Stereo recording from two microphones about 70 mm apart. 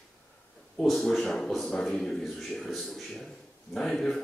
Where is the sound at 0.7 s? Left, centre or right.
Centre.